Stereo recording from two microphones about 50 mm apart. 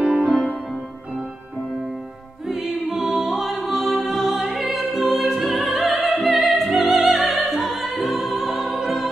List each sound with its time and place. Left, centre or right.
0.0 s music: right
2.4 s music: centre
5.9 s opera: centre
6.9 s music: centre